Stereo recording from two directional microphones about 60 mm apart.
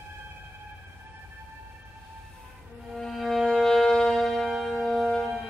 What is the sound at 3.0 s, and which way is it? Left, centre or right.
Music, centre.